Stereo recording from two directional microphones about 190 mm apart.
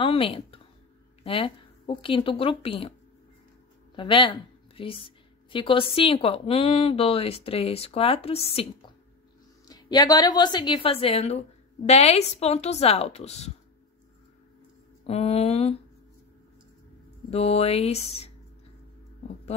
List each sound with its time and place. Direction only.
0.0 s a woman's voice: 30° left (ahead or behind)
3.9 s a woman's voice: 25° left (ahead or behind)
9.7 s a woman's voice: 20° left (ahead or behind)
15.0 s a woman's voice: 35° left (ahead or behind)
17.3 s a woman's voice: 35° left (ahead or behind)